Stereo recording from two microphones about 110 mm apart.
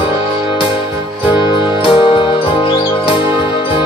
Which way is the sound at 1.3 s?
45° left (ahead or behind).